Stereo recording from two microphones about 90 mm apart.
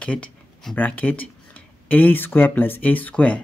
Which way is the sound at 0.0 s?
15° left (ahead or behind).